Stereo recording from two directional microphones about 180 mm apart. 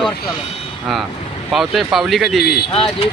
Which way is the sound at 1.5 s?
Centre (ahead or behind).